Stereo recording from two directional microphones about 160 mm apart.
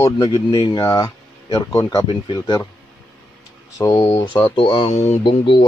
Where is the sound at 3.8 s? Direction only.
25° left (ahead or behind).